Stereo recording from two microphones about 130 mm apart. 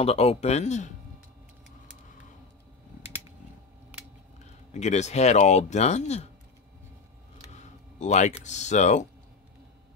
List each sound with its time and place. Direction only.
0.0 s speech: 50° left (ahead or behind)
4.7 s speech: 60° left (ahead or behind)
7.5 s speech: 65° left (ahead or behind)